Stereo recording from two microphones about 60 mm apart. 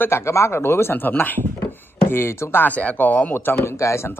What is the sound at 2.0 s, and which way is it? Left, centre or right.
Speech, left.